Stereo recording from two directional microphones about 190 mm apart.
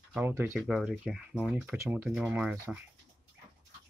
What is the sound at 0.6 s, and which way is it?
Speech, centre (ahead or behind).